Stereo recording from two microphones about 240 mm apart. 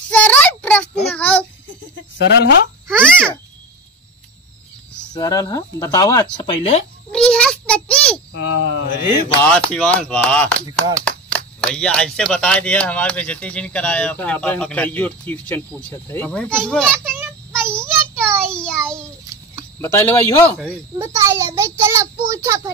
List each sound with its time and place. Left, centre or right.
0.1 s child singing: centre
2.1 s speech: left
2.9 s a sound: centre
5.1 s speech: centre
7.1 s a sound: centre
8.3 s speech: left
9.5 s speech: centre
17.5 s child singing: centre
19.3 s a sound: centre
19.8 s speech: centre
21.0 s a child's voice: centre
22.2 s child singing: centre